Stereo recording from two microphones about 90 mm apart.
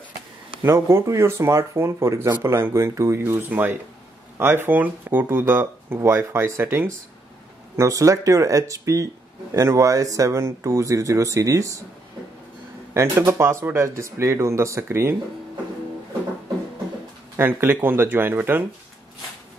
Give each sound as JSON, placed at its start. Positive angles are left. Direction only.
{"t": 0.6, "sound": "speech", "side_deg": -30}
{"t": 12.9, "sound": "speech", "side_deg": -35}
{"t": 17.4, "sound": "speech", "side_deg": -25}